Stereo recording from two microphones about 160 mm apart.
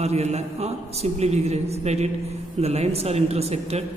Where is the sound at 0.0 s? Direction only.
40° right (ahead or behind).